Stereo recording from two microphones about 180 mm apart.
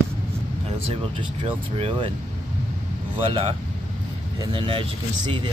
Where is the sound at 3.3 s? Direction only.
30° right (ahead or behind).